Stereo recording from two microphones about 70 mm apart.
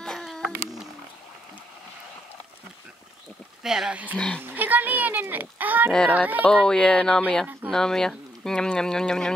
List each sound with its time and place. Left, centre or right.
0.0 s a sound: centre
3.6 s speech: centre
3.9 s speech: right
5.9 s speech: centre